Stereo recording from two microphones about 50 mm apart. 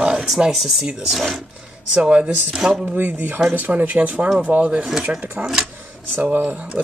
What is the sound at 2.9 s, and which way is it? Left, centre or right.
Speech, right.